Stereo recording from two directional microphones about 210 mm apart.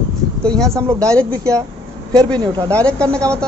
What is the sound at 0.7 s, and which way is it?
Speech, 15° right (ahead or behind).